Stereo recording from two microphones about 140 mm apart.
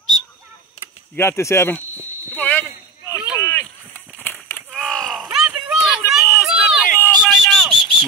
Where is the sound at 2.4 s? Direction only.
10° left (ahead or behind).